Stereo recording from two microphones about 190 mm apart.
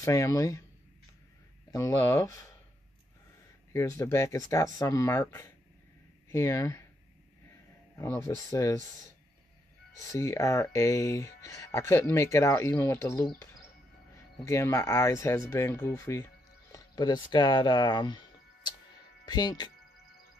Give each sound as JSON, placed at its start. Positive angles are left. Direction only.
{"t": 0.0, "sound": "speech", "side_deg": 15}
{"t": 1.7, "sound": "speech", "side_deg": 15}
{"t": 3.7, "sound": "speech", "side_deg": 15}
{"t": 8.0, "sound": "speech", "side_deg": 15}
{"t": 10.1, "sound": "speech", "side_deg": 15}